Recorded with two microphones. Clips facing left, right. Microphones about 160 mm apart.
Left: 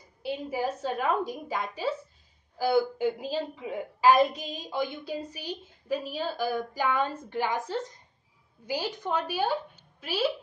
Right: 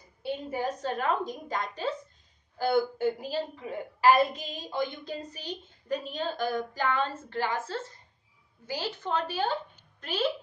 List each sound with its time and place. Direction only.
0.2 s a woman's voice: 5° left (ahead or behind)